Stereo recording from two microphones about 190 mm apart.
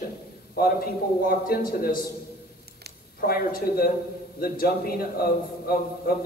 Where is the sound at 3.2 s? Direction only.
50° left (ahead or behind).